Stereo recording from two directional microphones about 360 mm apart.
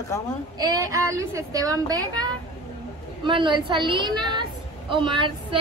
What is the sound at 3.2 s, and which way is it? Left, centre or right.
A woman's voice, centre.